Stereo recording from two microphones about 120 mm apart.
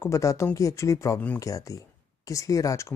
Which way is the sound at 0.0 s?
25° left (ahead or behind).